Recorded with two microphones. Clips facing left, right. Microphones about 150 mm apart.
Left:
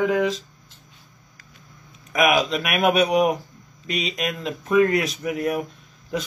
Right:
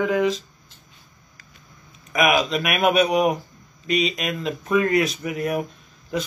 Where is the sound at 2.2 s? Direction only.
45° right (ahead or behind).